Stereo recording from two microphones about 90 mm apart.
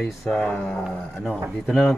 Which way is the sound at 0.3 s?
15° left (ahead or behind).